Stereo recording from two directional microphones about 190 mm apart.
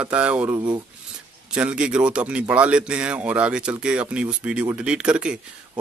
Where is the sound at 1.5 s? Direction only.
5° right (ahead or behind).